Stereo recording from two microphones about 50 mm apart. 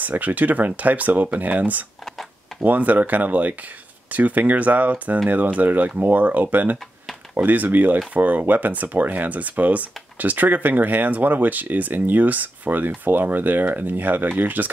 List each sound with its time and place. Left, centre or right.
0.0 s speech: right